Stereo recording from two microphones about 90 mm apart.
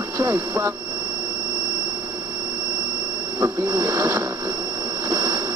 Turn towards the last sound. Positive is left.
turn(degrees=-40)  # may be behind; listen again after turning